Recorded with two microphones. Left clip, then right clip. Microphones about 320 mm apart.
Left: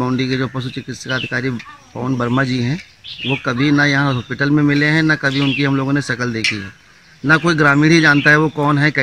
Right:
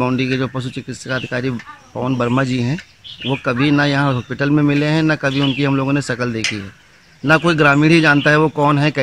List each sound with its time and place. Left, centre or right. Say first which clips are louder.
0.0 s a man's voice: right 1 dB; centre
3.6 s a man's voice: left 2 dB; centre